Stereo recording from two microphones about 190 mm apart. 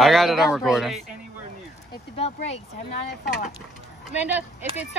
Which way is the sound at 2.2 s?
35° left (ahead or behind).